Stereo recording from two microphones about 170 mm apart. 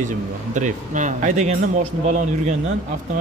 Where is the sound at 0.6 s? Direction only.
45° right (ahead or behind).